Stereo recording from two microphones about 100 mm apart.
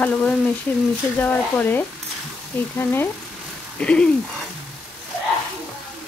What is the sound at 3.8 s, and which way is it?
Speech, 10° left (ahead or behind).